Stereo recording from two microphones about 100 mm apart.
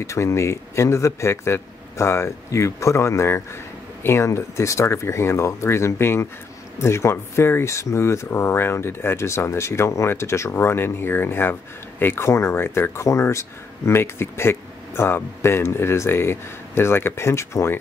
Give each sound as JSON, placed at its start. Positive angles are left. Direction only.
{"t": 0.0, "sound": "speech", "side_deg": 30}